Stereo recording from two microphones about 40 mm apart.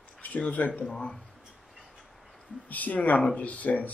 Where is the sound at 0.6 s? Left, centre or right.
Left.